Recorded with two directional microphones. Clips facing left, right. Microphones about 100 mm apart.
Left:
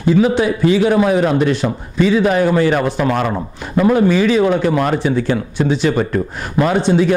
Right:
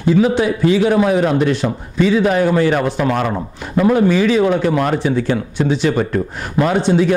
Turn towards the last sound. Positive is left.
turn(degrees=15)  # may be behind; listen again after turning